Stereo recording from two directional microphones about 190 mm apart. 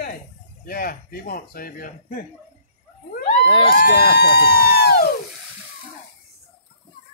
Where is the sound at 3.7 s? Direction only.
55° left (ahead or behind).